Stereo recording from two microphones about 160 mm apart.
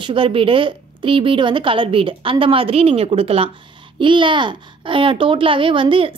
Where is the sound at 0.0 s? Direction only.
30° right (ahead or behind).